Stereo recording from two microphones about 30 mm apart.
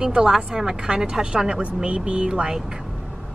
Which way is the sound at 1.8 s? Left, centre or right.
Right.